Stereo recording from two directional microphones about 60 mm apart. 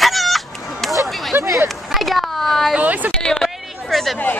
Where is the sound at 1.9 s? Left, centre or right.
Centre.